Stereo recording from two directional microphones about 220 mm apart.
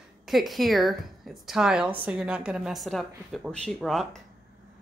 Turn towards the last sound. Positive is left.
turn(degrees=0)  # may be behind; listen again after turning